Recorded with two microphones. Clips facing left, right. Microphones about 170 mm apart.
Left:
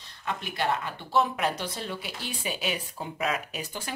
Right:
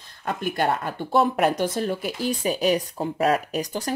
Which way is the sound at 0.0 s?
50° right (ahead or behind).